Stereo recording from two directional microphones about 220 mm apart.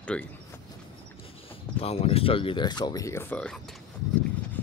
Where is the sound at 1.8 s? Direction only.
25° left (ahead or behind); by 3.6 s 5° left (ahead or behind).